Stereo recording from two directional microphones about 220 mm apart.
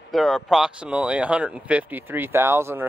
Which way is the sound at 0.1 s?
Centre (ahead or behind).